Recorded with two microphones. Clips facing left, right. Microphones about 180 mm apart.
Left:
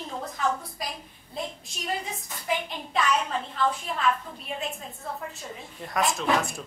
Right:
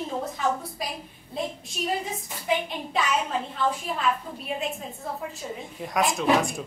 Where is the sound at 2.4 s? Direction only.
5° right (ahead or behind).